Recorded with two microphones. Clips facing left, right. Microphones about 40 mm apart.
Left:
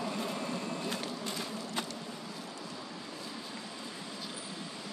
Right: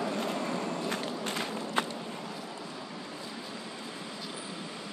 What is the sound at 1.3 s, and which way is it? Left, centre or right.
Run, right.